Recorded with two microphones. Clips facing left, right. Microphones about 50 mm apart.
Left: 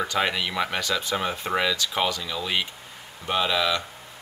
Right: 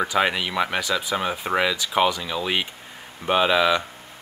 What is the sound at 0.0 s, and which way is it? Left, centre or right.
Speech, centre.